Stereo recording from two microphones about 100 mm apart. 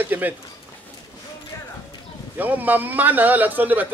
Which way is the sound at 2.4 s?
15° right (ahead or behind).